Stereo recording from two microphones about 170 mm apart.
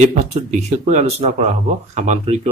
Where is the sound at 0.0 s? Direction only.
45° right (ahead or behind).